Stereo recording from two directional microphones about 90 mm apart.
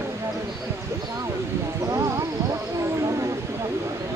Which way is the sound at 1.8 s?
40° right (ahead or behind).